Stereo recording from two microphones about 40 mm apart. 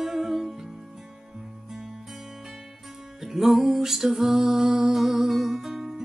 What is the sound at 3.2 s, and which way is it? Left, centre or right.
Music, centre.